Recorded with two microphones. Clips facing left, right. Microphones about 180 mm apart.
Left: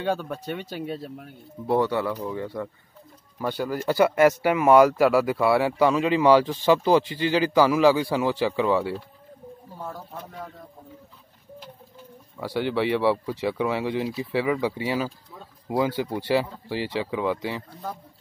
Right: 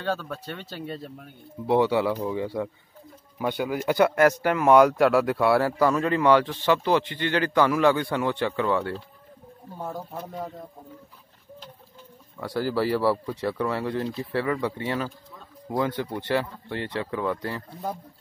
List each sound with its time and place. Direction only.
0.0 s speech: 15° left (ahead or behind); by 3.9 s 5° right (ahead or behind)
3.9 s speech: 5° left (ahead or behind)
9.8 s speech: 15° right (ahead or behind)
12.4 s speech: centre (ahead or behind)